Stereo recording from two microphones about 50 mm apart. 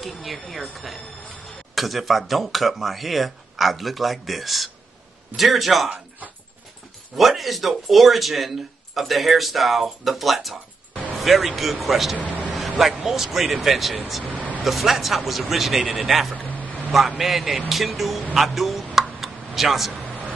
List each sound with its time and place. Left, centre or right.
0.0 s speech: centre
7.2 s speech: centre
12.5 s vehicle: centre
13.0 s speech: centre
14.3 s vehicle: right
14.6 s speech: centre
16.3 s a sound: right
17.2 s speech: centre
19.9 s a sound: right